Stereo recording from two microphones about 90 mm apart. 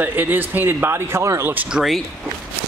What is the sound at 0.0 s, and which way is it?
Speech, 20° right (ahead or behind).